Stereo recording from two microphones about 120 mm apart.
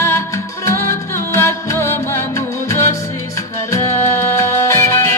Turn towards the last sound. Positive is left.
turn(degrees=25)  # may be behind; listen again after turning